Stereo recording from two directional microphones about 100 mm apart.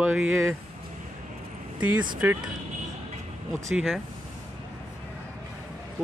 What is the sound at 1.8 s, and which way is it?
Speech, 20° right (ahead or behind).